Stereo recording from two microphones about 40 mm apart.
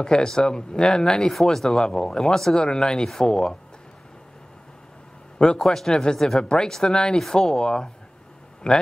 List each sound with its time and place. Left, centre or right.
0.0 s speech: centre
5.4 s speech: centre